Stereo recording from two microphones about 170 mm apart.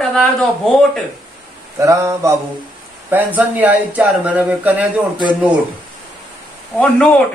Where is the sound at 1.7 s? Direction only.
15° right (ahead or behind).